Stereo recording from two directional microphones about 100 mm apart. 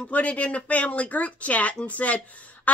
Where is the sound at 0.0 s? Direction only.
15° left (ahead or behind).